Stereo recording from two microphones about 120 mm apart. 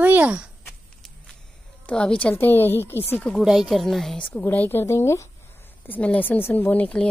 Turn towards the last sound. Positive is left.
turn(degrees=10)  # may be behind; listen again after turning